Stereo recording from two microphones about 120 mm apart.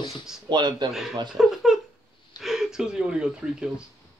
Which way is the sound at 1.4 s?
5° right (ahead or behind).